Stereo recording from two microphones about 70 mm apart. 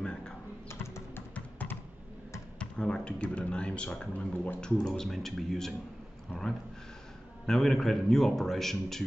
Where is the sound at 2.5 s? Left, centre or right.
Centre.